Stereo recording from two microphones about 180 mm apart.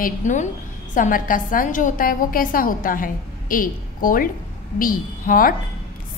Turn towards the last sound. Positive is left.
turn(degrees=50)  # may be behind; listen again after turning